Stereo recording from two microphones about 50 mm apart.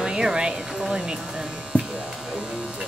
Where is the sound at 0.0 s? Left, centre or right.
Centre.